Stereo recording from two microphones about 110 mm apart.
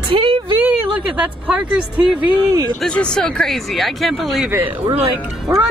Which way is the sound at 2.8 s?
10° left (ahead or behind).